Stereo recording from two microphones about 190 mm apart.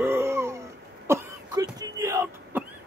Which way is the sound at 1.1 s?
15° right (ahead or behind).